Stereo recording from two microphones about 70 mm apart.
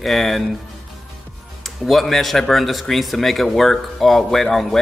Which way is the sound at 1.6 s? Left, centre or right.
Centre.